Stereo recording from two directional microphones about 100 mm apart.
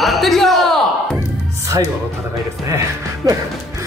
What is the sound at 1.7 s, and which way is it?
Speech, 35° right (ahead or behind).